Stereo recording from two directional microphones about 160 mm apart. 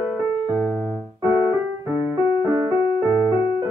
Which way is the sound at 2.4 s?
20° right (ahead or behind).